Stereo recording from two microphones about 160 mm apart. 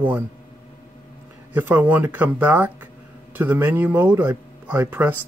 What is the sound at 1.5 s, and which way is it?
Speech, 15° right (ahead or behind).